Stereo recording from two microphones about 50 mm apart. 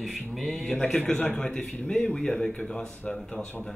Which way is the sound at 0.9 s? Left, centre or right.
Centre.